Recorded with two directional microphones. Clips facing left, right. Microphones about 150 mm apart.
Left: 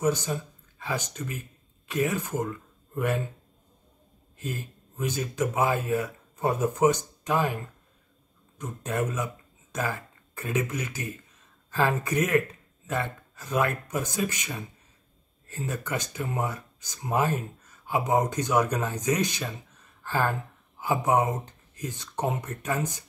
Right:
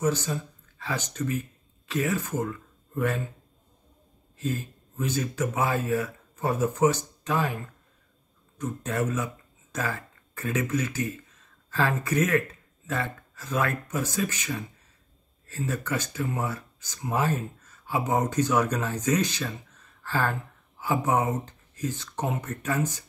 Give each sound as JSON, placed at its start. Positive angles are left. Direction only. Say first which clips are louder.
{"t": 0.0, "sound": "speech", "louder": "even", "side_deg": 15}
{"t": 5.0, "sound": "speech", "louder": "even", "side_deg": 15}
{"t": 8.5, "sound": "speech", "louder": "right 1 dB", "side_deg": 15}